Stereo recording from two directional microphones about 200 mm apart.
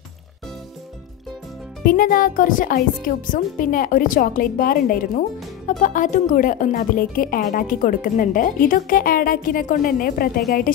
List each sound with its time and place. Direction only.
1.9 s speech: 45° left (ahead or behind)